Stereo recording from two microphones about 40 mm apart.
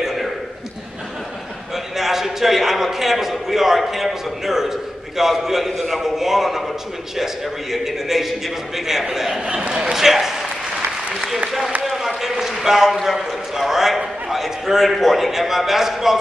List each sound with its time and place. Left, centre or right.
0.0 s a sound: centre
2.0 s a man's voice: centre
7.7 s a man's voice: centre